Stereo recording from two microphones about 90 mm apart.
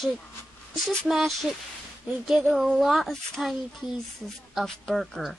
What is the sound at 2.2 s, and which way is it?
Speech, 5° right (ahead or behind).